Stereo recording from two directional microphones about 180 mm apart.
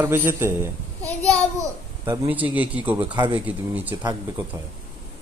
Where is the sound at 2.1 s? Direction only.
10° right (ahead or behind).